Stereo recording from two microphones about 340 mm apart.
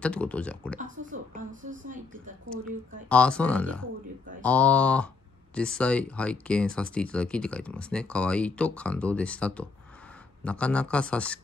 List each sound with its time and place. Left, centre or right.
0.0 s speech: centre
0.7 s a woman's voice: right
3.1 s speech: centre